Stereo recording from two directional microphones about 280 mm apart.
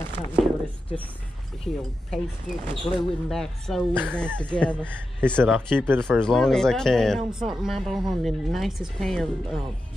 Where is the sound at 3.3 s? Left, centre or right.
Centre.